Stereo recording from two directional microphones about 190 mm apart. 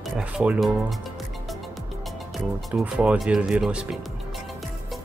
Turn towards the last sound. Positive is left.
turn(degrees=-5)  # may be behind; listen again after turning